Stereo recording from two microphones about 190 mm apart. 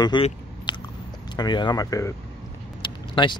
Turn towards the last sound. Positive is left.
turn(degrees=25)  # may be behind; listen again after turning